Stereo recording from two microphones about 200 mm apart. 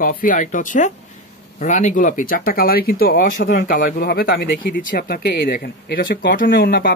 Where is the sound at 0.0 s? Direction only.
45° left (ahead or behind).